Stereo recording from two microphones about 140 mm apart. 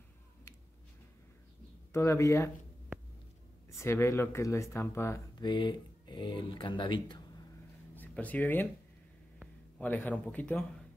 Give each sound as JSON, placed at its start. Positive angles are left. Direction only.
{"t": 1.9, "sound": "speech", "side_deg": 20}
{"t": 3.8, "sound": "speech", "side_deg": 20}
{"t": 5.4, "sound": "speech", "side_deg": 35}
{"t": 7.9, "sound": "speech", "side_deg": 10}
{"t": 9.8, "sound": "speech", "side_deg": 10}